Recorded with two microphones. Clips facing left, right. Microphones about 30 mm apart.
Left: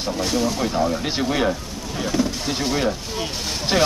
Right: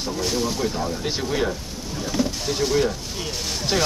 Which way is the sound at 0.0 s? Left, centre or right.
Centre.